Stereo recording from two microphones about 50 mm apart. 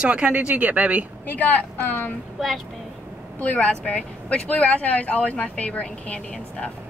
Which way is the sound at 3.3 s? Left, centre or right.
Left.